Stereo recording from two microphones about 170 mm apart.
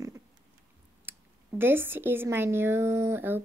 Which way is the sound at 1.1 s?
15° right (ahead or behind).